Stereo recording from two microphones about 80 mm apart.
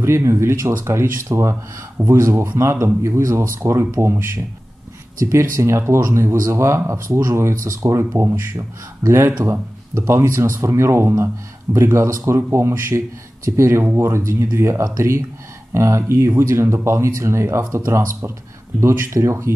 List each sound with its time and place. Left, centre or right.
0.0 s speech: right